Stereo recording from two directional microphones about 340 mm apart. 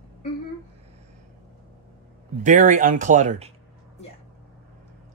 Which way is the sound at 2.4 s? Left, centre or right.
Right.